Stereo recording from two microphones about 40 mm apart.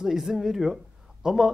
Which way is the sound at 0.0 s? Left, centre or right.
Centre.